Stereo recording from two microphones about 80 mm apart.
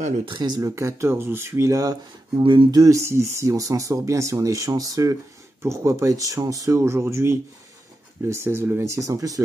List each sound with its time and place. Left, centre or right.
0.3 s speech: right
0.7 s speech: right
2.4 s speech: right
2.7 s speech: right
5.6 s speech: right